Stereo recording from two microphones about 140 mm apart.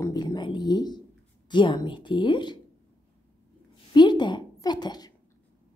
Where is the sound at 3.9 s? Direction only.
30° left (ahead or behind).